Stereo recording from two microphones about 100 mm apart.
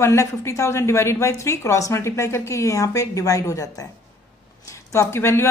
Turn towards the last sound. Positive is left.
turn(degrees=25)  # may be behind; listen again after turning